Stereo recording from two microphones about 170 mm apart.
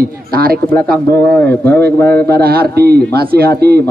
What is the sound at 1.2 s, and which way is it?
Speech, 10° left (ahead or behind).